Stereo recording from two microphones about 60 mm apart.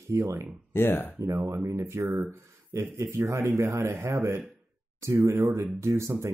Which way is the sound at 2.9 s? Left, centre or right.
Right.